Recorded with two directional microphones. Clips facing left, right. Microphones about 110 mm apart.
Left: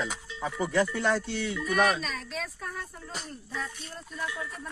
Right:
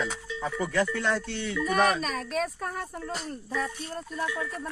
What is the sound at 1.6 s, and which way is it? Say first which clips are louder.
Speech: right 2 dB; 45° right (ahead or behind).